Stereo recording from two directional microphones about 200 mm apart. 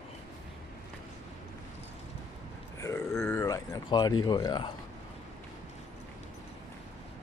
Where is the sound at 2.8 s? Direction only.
15° left (ahead or behind).